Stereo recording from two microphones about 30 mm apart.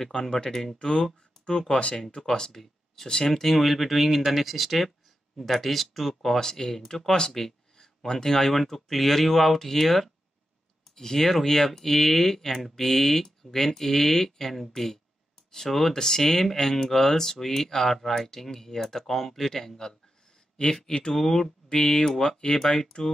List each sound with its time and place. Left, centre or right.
0.1 s speech: left
0.5 s speech: centre
0.7 s speech: left
3.5 s speech: centre
21.1 s speech: centre
21.6 s speech: left
21.9 s speech: centre